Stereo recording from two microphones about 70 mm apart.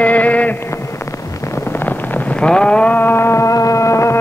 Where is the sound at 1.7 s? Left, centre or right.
Left.